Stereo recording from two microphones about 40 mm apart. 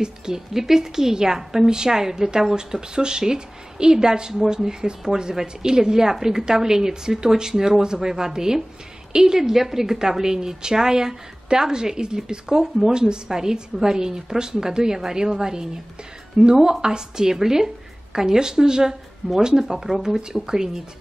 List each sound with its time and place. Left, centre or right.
0.0 s a woman's voice: centre